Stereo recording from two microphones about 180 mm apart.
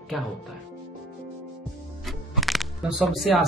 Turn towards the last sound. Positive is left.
turn(degrees=0)  # may be behind; listen again after turning